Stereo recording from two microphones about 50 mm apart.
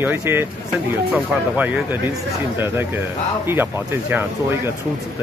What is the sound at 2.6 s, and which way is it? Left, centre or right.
Speech, right.